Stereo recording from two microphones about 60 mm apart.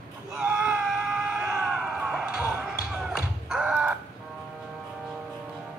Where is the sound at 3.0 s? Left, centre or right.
Centre.